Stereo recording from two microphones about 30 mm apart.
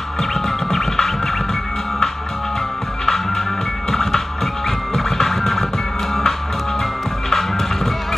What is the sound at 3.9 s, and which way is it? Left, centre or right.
Music, centre.